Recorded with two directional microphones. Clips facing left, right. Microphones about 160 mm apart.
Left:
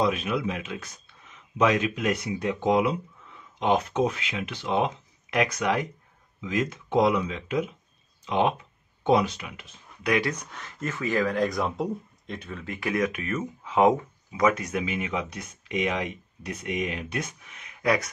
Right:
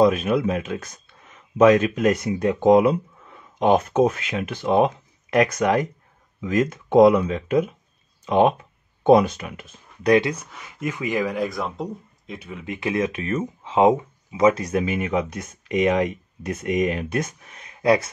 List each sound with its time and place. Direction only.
0.0 s speech: 45° right (ahead or behind)
10.3 s speech: 5° right (ahead or behind); by 18.1 s 30° right (ahead or behind)